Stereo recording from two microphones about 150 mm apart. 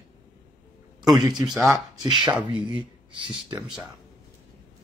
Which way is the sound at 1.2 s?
25° right (ahead or behind).